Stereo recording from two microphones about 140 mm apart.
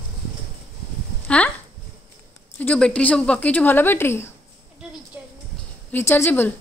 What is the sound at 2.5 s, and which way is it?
A woman's voice, 10° left (ahead or behind).